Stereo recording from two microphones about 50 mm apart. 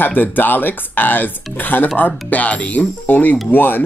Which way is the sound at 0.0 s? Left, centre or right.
Left.